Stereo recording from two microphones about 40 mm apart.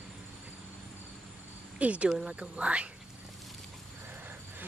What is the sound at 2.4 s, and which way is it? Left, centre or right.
Speech, right.